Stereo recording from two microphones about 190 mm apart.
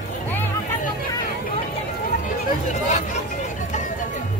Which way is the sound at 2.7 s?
40° left (ahead or behind).